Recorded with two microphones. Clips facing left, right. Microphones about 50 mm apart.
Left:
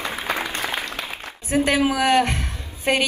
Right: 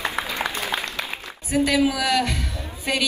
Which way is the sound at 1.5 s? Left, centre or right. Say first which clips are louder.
Left 1 dB; left.